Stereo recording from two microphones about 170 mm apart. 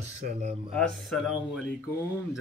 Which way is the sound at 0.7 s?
5° left (ahead or behind).